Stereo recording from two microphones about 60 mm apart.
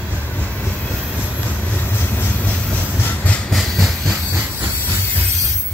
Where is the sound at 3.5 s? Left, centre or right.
Centre.